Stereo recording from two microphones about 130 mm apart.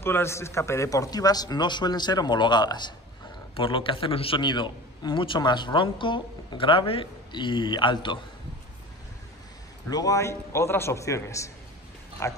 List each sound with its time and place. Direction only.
0.0 s a man's voice: 20° left (ahead or behind); by 8.2 s 40° left (ahead or behind)
9.8 s a man's voice: 30° left (ahead or behind)